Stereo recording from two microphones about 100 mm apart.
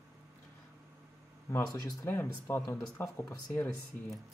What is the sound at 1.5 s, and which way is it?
Speech, 30° left (ahead or behind).